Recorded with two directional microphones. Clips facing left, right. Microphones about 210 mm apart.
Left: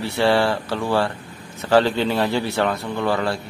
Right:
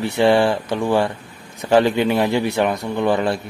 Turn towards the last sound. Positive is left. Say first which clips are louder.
# right 3 dB
turn(degrees=-20)  # may be behind; listen again after turning